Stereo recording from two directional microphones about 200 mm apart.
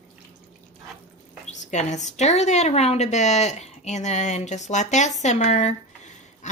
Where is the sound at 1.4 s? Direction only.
35° left (ahead or behind).